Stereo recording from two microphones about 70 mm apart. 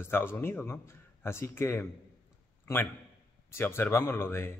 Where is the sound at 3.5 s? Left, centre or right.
Left.